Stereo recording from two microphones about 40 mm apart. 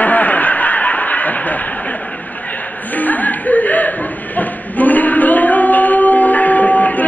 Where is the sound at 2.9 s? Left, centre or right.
Left.